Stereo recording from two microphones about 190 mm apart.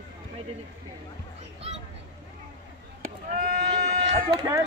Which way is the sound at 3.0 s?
45° right (ahead or behind).